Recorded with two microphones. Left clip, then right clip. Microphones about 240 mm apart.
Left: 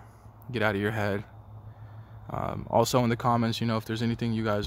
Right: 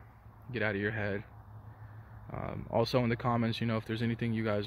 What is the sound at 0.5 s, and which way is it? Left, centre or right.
Speech, left.